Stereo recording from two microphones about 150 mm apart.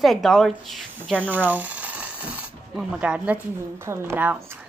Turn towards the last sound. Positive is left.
turn(degrees=-15)  # may be behind; listen again after turning